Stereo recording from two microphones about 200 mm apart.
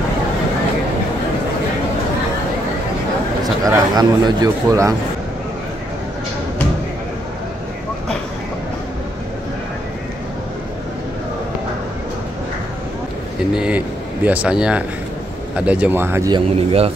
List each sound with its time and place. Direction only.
3.6 s speech: 20° right (ahead or behind)
13.6 s speech: 5° right (ahead or behind); by 16.9 s 30° right (ahead or behind)